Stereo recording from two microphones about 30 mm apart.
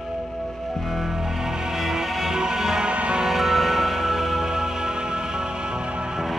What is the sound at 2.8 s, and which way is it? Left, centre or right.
Music, right.